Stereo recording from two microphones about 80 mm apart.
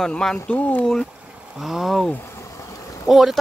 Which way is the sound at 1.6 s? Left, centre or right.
Centre.